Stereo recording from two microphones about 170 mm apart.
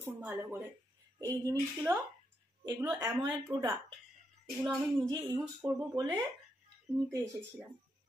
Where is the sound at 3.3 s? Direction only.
15° right (ahead or behind).